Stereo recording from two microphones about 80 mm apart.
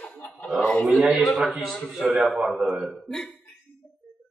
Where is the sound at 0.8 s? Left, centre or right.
Centre.